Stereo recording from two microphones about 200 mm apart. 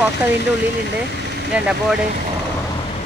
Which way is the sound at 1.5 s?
5° right (ahead or behind).